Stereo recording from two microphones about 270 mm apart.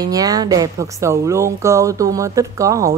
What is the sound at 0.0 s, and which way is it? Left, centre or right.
Speech, centre.